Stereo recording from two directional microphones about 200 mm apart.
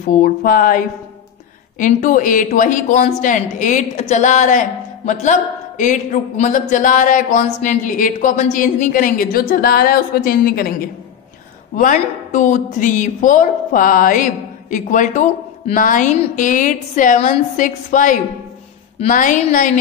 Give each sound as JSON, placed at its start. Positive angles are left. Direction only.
{"t": 0.0, "sound": "speech", "side_deg": 45}
{"t": 11.7, "sound": "speech", "side_deg": 40}